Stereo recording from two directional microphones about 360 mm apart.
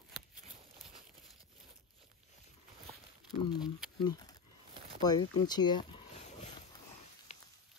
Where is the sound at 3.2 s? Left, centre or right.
Centre.